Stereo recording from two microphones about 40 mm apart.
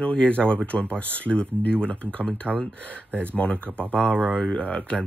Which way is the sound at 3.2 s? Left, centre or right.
Left.